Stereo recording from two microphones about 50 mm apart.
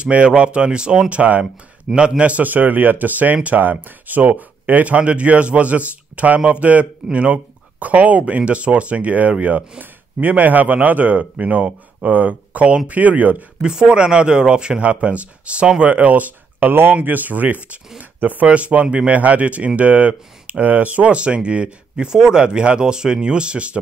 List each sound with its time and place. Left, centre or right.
0.0 s a man's voice: right
13.6 s speech: centre